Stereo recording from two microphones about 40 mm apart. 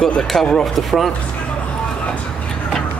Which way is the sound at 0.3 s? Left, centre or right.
Centre.